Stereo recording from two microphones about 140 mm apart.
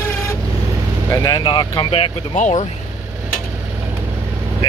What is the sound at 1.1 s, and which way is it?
Speech, 30° left (ahead or behind).